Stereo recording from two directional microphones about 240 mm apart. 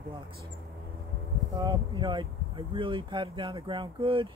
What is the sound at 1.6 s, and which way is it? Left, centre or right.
Speech, centre.